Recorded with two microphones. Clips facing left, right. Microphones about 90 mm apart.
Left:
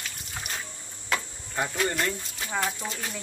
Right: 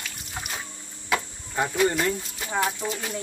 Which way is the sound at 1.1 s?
10° right (ahead or behind).